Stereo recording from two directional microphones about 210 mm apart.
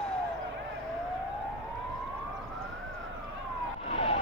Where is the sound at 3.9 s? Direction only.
30° left (ahead or behind).